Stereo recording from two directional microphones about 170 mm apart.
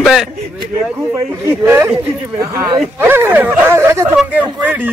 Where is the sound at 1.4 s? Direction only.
15° right (ahead or behind).